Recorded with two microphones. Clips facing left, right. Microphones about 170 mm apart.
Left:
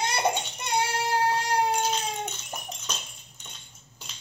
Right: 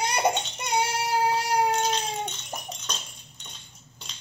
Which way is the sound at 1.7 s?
5° left (ahead or behind).